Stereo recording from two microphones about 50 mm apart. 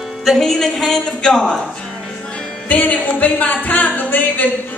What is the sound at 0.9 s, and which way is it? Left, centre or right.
Speech, centre.